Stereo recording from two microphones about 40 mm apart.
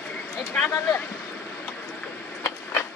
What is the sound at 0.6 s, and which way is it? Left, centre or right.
Speech, left.